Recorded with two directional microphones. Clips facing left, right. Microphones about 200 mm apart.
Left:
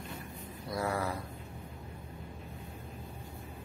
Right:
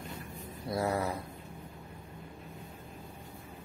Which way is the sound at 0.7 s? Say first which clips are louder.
Right 2 dB; 25° right (ahead or behind).